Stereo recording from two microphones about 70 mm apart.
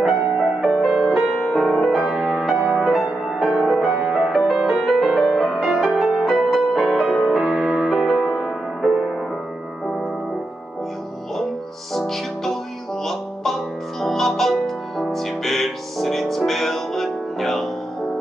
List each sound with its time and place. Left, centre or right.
0.0 s music: centre
0.6 s music: centre
11.9 s music: centre